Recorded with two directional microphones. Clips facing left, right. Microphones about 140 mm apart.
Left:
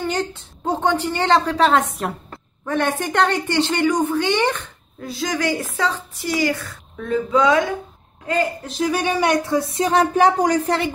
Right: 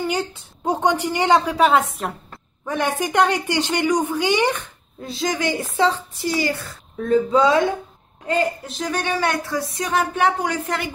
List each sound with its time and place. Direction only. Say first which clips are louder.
0.0 s a woman's voice: even; 10° right (ahead or behind)
5.0 s a woman's voice: even; 20° right (ahead or behind)
8.6 s a man's voice: left 4 dB; centre (ahead or behind)
9.0 s speech: left 2 dB; 20° left (ahead or behind); by 10.9 s 35° left (ahead or behind)